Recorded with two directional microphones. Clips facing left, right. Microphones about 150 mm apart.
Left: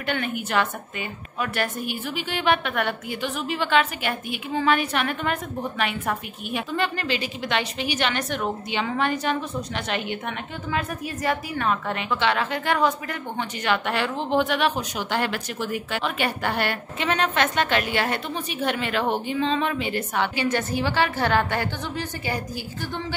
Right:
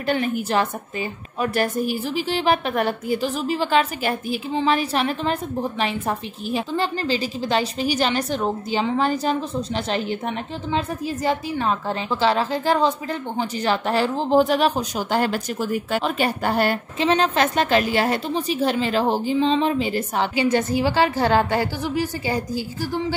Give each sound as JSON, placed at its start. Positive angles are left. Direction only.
{"t": 0.0, "sound": "a woman's voice", "side_deg": -35}
{"t": 20.3, "sound": "a woman's voice", "side_deg": -15}